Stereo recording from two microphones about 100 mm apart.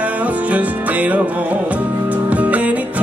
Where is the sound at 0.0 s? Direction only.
15° right (ahead or behind).